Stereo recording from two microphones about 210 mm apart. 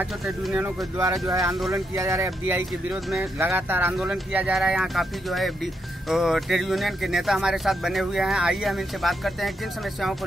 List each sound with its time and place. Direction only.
0.0 s speech: 5° right (ahead or behind)